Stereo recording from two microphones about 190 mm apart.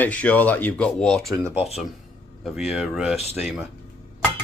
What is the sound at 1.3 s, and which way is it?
Speech, 15° right (ahead or behind).